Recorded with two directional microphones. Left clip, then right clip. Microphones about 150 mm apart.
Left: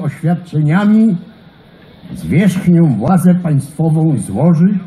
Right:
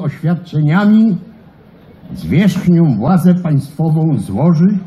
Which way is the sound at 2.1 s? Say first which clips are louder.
Even; 70° left (ahead or behind).